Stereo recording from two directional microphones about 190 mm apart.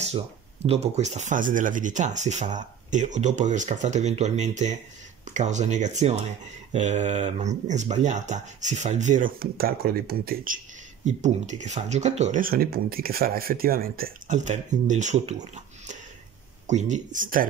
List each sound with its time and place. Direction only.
0.7 s speech: 35° right (ahead or behind)
11.1 s speech: 40° right (ahead or behind)